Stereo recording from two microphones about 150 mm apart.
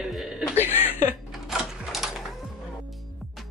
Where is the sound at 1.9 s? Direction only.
Centre (ahead or behind).